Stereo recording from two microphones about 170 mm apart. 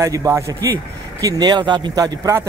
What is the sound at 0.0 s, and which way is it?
Speech, 20° right (ahead or behind).